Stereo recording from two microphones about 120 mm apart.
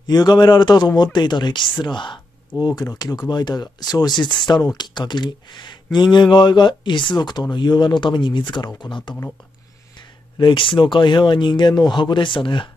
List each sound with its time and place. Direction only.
0.0 s speech: 35° left (ahead or behind)
10.4 s speech: 45° left (ahead or behind)